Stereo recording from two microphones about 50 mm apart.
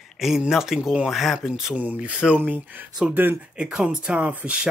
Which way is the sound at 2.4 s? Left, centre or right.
Right.